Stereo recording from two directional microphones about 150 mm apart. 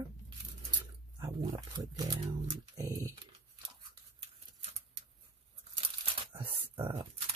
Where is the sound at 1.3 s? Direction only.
30° right (ahead or behind).